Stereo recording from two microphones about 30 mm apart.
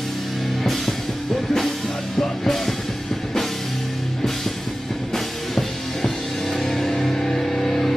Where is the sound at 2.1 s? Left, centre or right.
Centre.